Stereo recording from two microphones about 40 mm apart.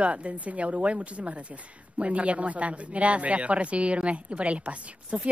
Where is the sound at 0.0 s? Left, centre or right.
Right.